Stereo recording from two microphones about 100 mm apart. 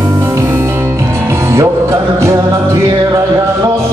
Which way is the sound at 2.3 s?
50° right (ahead or behind).